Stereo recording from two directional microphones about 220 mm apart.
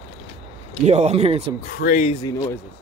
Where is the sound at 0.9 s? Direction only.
30° right (ahead or behind).